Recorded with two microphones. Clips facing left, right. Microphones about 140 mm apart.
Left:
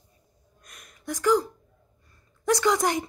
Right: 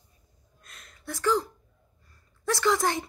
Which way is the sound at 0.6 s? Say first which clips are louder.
Left 1 dB; 15° left (ahead or behind).